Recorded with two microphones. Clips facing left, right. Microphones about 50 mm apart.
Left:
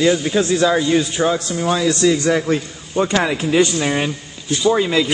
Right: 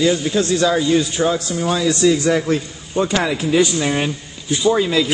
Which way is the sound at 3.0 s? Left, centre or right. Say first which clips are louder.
Left 1 dB; centre.